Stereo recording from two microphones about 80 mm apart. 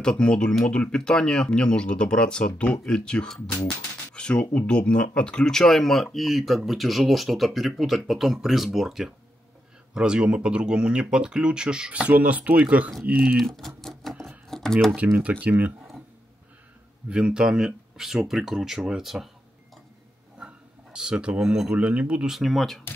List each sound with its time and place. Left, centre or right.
0.0 s speech: centre
13.4 s a sound: centre
14.5 s computer keyboard: centre
15.1 s speech: centre
17.1 s speech: centre
20.3 s speech: centre
22.3 s speech: centre